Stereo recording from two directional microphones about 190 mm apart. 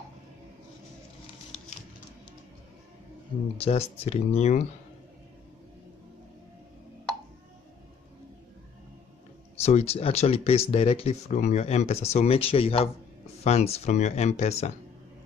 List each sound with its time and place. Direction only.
3.5 s speech: 30° left (ahead or behind)
9.6 s speech: 35° left (ahead or behind)